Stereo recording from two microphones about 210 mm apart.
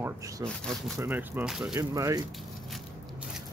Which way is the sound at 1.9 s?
15° right (ahead or behind).